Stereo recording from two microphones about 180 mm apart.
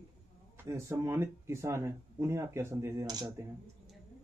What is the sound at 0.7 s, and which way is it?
Speech, 15° right (ahead or behind).